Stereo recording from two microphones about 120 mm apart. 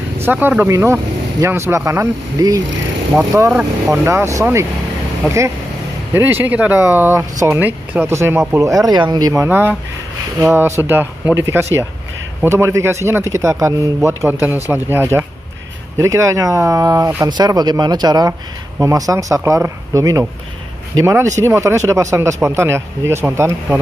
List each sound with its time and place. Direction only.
0.2 s speech: 15° right (ahead or behind); by 2.6 s 30° right (ahead or behind)
3.5 s speech: 20° right (ahead or behind)
6.1 s speech: 15° right (ahead or behind); by 9.3 s 35° right (ahead or behind)
9.3 s speech: 20° right (ahead or behind)